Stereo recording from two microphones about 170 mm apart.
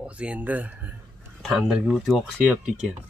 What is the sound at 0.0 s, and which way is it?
Speech, 5° right (ahead or behind).